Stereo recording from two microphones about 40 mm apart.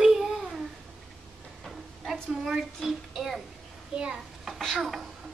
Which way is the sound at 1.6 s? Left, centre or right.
Centre.